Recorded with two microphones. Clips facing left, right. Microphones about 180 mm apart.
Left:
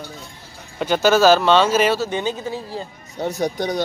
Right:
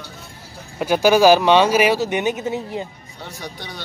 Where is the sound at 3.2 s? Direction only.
45° left (ahead or behind).